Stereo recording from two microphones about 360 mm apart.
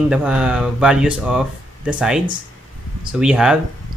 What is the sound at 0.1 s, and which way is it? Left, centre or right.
Speech, centre.